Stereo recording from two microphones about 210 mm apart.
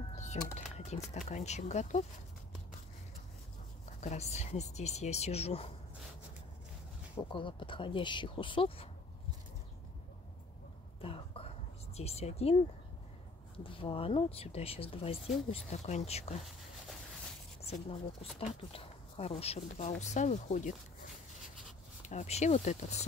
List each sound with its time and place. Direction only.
0.1 s a sound: 30° left (ahead or behind)
0.7 s speech: 30° left (ahead or behind)
4.0 s speech: 30° left (ahead or behind)
7.2 s speech: 25° left (ahead or behind)
11.0 s whispering: 25° left (ahead or behind)
13.7 s speech: 25° left (ahead or behind)
17.6 s speech: 30° left (ahead or behind)
22.0 s speech: 35° left (ahead or behind)